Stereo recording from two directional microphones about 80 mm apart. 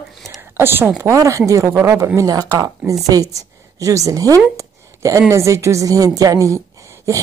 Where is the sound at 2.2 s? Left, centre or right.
Right.